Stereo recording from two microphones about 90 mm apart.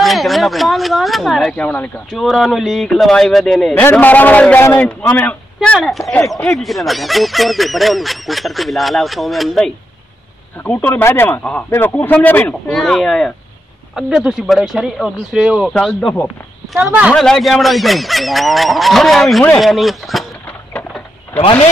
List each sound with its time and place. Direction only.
0.0 s speech: centre (ahead or behind)
1.6 s speech: 20° left (ahead or behind)
2.0 s speech: centre (ahead or behind)
3.9 s a man's voice: 20° left (ahead or behind)
5.8 s speech: centre (ahead or behind)
10.6 s speech: 20° left (ahead or behind)
11.9 s speech: 15° left (ahead or behind)
12.6 s speech: 5° left (ahead or behind)
15.6 s a man's voice: 5° left (ahead or behind)